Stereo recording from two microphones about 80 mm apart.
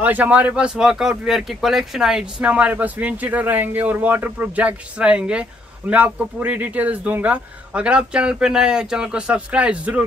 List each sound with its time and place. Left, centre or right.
0.0 s speech: right